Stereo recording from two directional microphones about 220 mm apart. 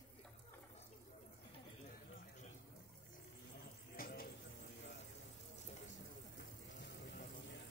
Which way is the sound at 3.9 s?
40° left (ahead or behind).